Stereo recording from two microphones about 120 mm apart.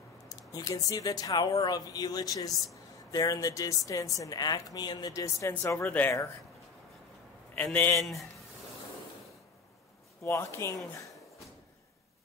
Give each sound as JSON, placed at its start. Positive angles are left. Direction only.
{"t": 0.4, "sound": "a woman's voice", "side_deg": 30}
{"t": 7.5, "sound": "speech", "side_deg": 15}
{"t": 8.0, "sound": "speech", "side_deg": 0}
{"t": 10.2, "sound": "a woman's voice", "side_deg": 25}